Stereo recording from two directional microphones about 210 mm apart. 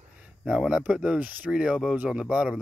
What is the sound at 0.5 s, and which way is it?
Speech, 5° right (ahead or behind).